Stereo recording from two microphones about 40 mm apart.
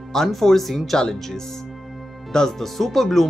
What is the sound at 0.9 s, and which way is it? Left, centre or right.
Speech, centre.